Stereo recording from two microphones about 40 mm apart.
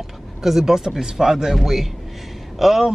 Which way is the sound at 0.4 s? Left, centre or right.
Centre.